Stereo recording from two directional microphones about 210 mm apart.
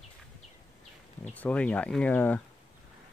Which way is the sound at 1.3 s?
5° left (ahead or behind).